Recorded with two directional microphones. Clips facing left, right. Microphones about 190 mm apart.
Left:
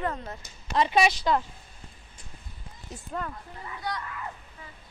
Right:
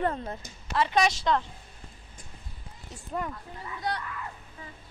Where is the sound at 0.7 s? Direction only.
20° left (ahead or behind).